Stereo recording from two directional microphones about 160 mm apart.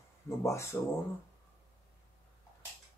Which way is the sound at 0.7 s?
15° left (ahead or behind).